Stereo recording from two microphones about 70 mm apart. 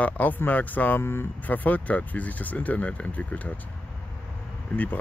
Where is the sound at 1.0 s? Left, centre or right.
Left.